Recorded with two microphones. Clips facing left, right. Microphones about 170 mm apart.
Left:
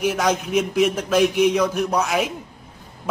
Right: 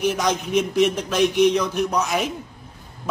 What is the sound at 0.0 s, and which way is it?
A man's voice, 5° left (ahead or behind).